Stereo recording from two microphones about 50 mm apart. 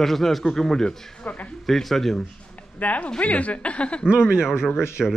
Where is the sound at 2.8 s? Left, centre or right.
Left.